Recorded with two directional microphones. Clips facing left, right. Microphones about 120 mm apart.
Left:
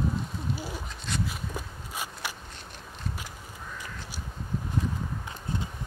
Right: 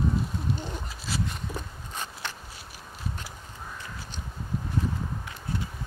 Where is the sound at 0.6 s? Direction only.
5° left (ahead or behind).